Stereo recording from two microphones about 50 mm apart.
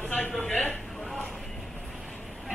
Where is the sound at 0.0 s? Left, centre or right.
Left.